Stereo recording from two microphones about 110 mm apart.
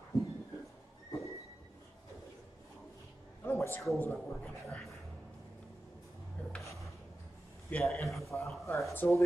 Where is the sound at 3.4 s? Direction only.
25° left (ahead or behind).